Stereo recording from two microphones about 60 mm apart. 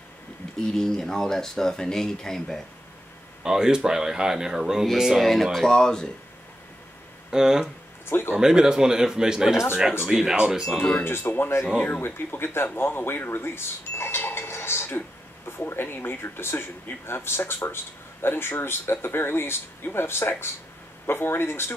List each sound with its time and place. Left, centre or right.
0.6 s speech: centre
3.4 s speech: centre
7.2 s speech: centre
8.1 s speech: left
8.4 s speech: centre
11.1 s speech: left